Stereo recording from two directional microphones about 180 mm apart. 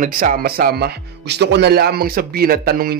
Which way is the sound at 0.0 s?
50° right (ahead or behind).